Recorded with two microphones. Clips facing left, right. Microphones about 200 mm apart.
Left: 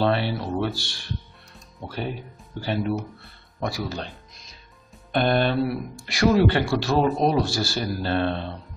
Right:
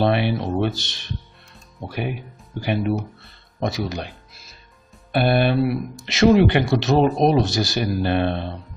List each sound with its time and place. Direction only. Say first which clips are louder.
0.0 s speech: right 3 dB; 15° right (ahead or behind)
4.1 s music: even; 5° right (ahead or behind)
5.1 s speech: right 3 dB; 10° right (ahead or behind)